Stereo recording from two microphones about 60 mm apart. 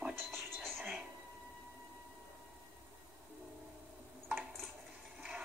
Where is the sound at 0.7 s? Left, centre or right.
Centre.